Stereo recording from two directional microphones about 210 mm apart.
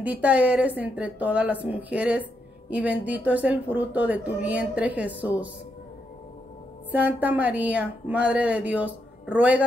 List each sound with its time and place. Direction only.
0.0 s speech: 5° right (ahead or behind)
6.9 s speech: 10° right (ahead or behind)